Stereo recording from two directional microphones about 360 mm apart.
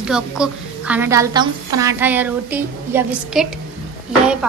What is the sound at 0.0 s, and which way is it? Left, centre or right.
A woman's voice, centre.